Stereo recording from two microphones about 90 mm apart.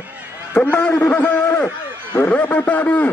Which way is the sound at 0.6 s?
15° left (ahead or behind).